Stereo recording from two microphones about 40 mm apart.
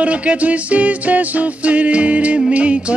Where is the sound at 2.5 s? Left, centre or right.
Right.